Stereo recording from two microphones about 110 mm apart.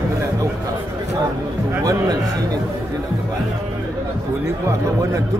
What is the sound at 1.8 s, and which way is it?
Speech, 35° right (ahead or behind).